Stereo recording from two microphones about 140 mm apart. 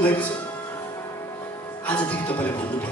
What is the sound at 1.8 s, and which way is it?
Speech, 10° left (ahead or behind).